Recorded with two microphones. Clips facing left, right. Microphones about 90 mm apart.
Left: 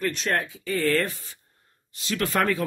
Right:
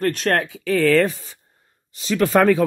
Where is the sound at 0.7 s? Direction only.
90° right.